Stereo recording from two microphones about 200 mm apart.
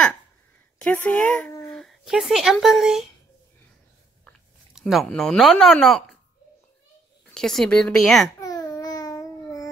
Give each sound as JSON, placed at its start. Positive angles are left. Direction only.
{"t": 0.7, "sound": "speech", "side_deg": 5}
{"t": 4.2, "sound": "speech", "side_deg": 0}
{"t": 7.3, "sound": "a woman's voice", "side_deg": 5}
{"t": 8.4, "sound": "babbling", "side_deg": 15}